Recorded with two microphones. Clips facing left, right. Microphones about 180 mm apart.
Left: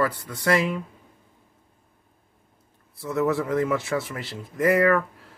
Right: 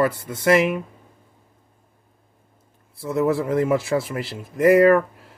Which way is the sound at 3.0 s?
25° right (ahead or behind).